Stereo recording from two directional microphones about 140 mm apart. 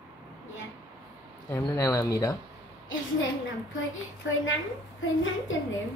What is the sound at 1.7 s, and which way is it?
Speech, 20° left (ahead or behind).